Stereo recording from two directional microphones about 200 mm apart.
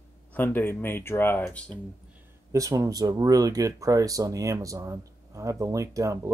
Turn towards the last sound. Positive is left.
turn(degrees=-15)  # may be behind; listen again after turning